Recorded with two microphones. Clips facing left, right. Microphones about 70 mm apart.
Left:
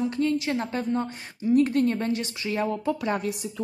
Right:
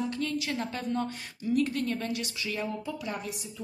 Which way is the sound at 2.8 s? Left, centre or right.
Left.